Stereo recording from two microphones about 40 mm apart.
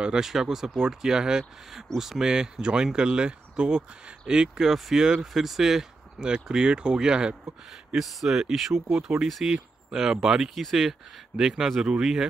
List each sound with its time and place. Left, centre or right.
0.2 s speech: centre
6.2 s speech: right
7.9 s speech: centre
8.9 s speech: centre
10.5 s speech: centre
11.3 s speech: centre